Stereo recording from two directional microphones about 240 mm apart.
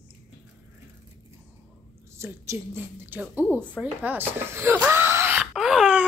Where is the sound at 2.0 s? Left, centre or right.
Centre.